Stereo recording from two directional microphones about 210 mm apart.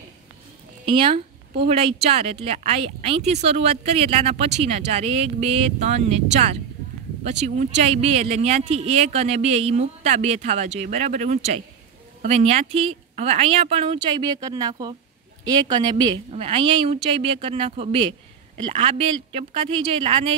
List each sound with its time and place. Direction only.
0.8 s speech: 25° right (ahead or behind)